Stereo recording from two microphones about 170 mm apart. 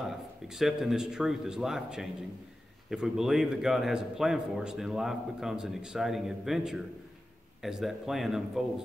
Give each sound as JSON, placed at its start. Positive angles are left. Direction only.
{"t": 0.5, "sound": "a man's voice", "side_deg": 0}